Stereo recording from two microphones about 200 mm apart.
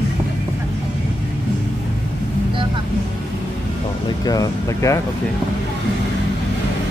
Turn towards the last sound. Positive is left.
turn(degrees=15)  # may be behind; listen again after turning